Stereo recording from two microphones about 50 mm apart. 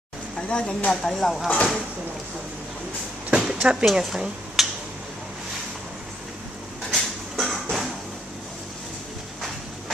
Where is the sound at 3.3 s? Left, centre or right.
Centre.